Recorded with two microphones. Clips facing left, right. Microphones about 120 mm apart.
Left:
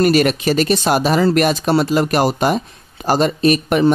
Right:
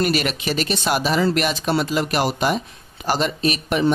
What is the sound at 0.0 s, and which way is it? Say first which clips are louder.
Speech: left 7 dB; 45° left (ahead or behind).